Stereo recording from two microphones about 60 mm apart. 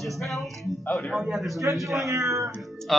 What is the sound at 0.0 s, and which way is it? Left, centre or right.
Speech, centre.